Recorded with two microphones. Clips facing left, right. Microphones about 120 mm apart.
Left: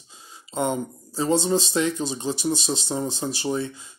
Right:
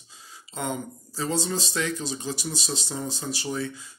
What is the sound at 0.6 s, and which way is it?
Speech, 25° left (ahead or behind).